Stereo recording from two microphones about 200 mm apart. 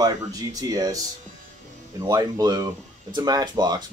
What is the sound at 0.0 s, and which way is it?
Speech, 20° right (ahead or behind).